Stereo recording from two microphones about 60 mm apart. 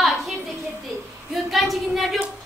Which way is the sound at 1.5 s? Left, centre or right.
Centre.